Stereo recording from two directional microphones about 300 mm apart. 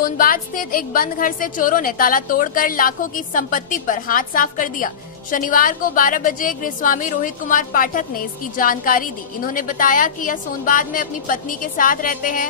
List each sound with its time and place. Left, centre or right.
0.0 s a woman's voice: left